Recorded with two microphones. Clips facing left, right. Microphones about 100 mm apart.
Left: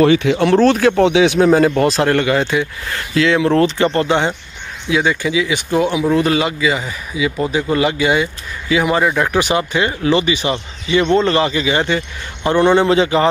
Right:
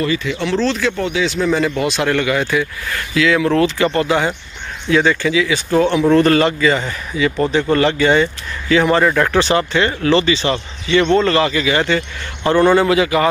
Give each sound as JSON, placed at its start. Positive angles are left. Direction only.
{"t": 0.0, "sound": "speech", "side_deg": 70}
{"t": 1.0, "sound": "speech", "side_deg": 65}
{"t": 1.8, "sound": "speech", "side_deg": 35}
{"t": 4.8, "sound": "speech", "side_deg": 15}